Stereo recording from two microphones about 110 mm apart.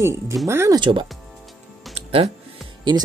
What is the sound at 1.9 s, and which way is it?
Music, 70° right (ahead or behind).